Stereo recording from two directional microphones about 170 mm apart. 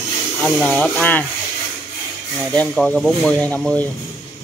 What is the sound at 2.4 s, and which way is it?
Speech, 5° left (ahead or behind).